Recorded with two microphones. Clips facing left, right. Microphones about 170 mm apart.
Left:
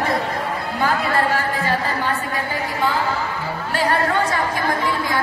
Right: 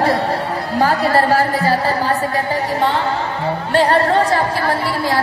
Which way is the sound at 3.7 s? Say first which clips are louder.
Right 6 dB; 30° right (ahead or behind).